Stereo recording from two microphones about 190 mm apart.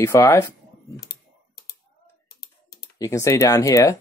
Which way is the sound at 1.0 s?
55° left (ahead or behind).